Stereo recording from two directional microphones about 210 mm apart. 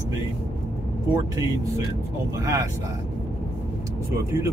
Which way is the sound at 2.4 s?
15° right (ahead or behind).